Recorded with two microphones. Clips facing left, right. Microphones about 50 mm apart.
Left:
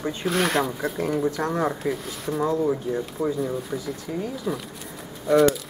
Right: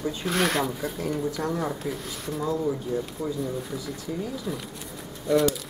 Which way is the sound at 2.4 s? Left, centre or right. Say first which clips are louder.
Left 3 dB; left.